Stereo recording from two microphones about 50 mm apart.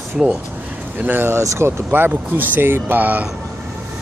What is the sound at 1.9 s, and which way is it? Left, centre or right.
Speech, right.